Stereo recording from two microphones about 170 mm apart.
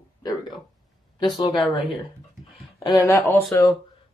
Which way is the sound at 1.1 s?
25° left (ahead or behind).